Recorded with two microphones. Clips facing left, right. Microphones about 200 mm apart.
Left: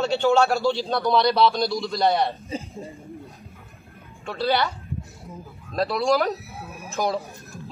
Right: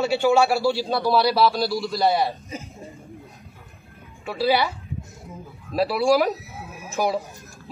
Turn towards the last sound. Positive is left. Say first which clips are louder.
# right 2 dB
turn(degrees=-10)  # may be behind; listen again after turning